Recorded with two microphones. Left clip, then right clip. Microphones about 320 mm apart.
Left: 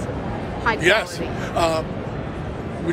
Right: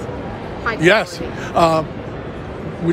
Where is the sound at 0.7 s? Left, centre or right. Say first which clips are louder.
Right 6 dB; centre.